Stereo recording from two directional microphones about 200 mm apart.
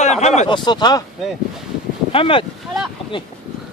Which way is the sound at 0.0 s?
35° left (ahead or behind).